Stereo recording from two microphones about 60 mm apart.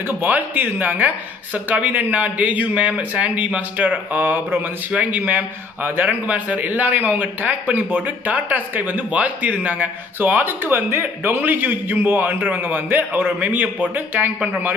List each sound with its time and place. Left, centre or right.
0.2 s a man's voice: right